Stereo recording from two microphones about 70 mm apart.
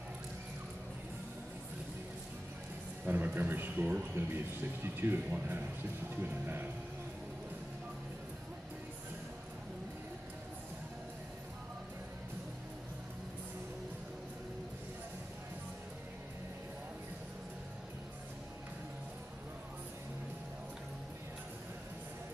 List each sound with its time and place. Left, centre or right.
3.1 s speech: right